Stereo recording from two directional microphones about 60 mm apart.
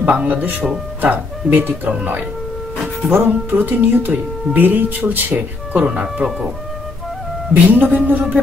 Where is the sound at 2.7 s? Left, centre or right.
Centre.